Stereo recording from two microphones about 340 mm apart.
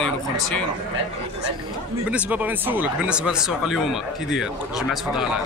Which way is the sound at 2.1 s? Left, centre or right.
Centre.